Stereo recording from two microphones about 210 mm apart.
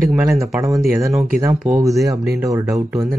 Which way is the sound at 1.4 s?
15° right (ahead or behind).